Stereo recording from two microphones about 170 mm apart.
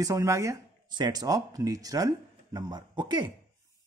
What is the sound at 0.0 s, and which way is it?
Speech, 20° right (ahead or behind).